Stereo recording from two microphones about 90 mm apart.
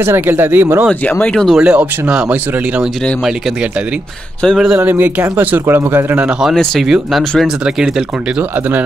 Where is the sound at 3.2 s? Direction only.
5° right (ahead or behind).